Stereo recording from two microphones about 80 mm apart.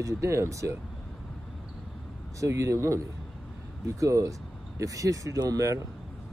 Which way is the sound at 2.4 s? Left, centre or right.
Right.